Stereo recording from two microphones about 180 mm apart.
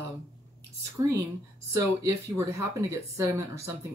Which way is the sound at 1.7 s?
15° right (ahead or behind).